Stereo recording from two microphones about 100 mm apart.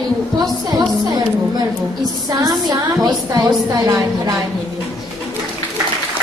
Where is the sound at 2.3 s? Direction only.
40° right (ahead or behind).